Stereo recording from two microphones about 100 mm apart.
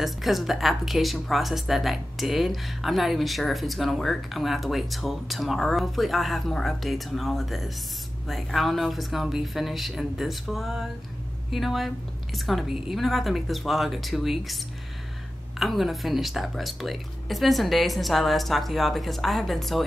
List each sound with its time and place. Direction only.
0.0 s speech: centre (ahead or behind)
15.6 s speech: centre (ahead or behind)